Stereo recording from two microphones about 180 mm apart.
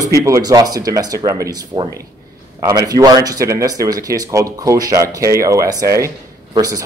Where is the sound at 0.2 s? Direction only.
20° right (ahead or behind).